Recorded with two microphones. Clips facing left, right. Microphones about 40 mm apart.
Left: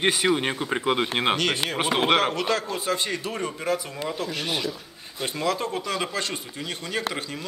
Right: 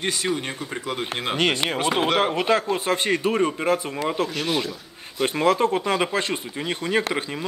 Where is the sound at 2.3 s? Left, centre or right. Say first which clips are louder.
Right 4 dB; right.